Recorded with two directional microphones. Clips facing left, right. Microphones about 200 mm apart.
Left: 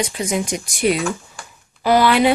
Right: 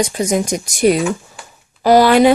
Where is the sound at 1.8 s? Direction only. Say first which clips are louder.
Right 5 dB; 40° right (ahead or behind).